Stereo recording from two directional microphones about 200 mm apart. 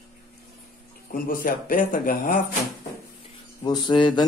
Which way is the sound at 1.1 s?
45° left (ahead or behind).